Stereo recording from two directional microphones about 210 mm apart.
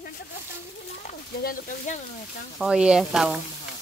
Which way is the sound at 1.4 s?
40° left (ahead or behind).